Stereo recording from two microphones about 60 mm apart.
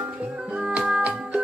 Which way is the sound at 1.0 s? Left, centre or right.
Right.